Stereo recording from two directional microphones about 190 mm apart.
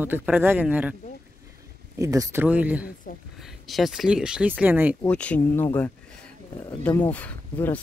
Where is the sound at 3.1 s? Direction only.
50° left (ahead or behind).